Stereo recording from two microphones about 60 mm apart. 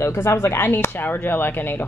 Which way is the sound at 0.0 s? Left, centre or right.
Left.